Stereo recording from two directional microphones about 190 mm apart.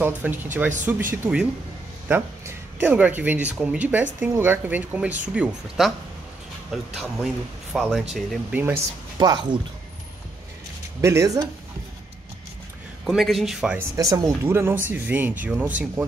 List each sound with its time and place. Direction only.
0.0 s speech: 10° right (ahead or behind)
9.2 s speech: 20° right (ahead or behind)
11.0 s speech: 15° right (ahead or behind)
13.0 s speech: centre (ahead or behind)
13.9 s speech: 20° right (ahead or behind)